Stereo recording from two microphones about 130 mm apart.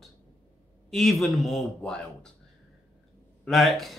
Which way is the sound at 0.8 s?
Centre (ahead or behind).